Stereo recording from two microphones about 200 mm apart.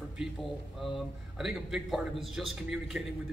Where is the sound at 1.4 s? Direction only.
Centre (ahead or behind).